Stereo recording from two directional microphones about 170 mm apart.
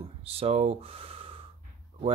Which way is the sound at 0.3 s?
35° right (ahead or behind).